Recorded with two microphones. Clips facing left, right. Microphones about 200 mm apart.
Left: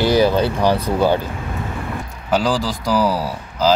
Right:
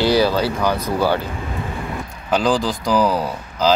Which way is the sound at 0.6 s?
30° left (ahead or behind).